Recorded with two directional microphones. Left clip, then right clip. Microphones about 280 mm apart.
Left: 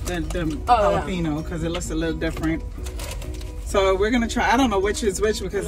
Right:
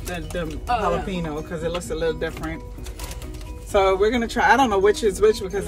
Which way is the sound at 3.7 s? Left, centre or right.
Centre.